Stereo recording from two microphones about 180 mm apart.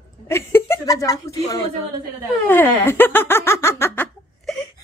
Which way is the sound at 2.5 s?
10° left (ahead or behind).